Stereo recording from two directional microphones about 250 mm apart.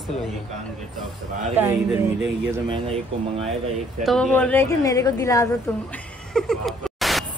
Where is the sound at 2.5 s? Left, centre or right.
Right.